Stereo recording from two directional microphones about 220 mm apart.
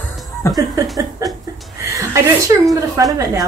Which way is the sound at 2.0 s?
15° right (ahead or behind).